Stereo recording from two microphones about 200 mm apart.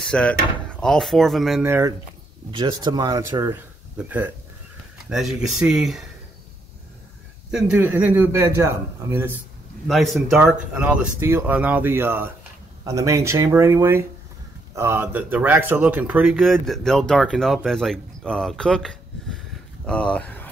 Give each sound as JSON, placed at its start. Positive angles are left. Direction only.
{"t": 0.0, "sound": "speech", "side_deg": 5}
{"t": 1.6, "sound": "speech", "side_deg": -10}
{"t": 7.5, "sound": "speech", "side_deg": -5}
{"t": 9.8, "sound": "speech", "side_deg": 0}